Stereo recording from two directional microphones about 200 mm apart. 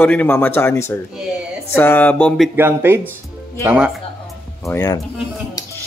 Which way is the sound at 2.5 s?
10° right (ahead or behind).